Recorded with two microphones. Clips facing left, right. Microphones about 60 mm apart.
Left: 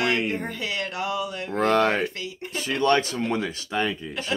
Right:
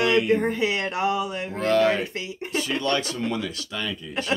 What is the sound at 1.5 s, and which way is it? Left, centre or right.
Speech, left.